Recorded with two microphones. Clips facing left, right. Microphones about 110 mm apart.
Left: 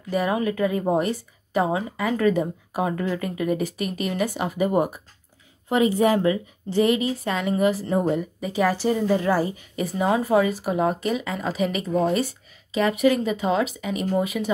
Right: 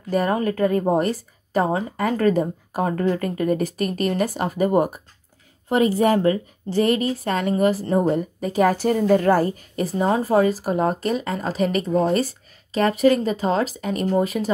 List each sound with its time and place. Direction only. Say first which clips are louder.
0.1 s a woman's voice: right 2 dB; 45° right (ahead or behind)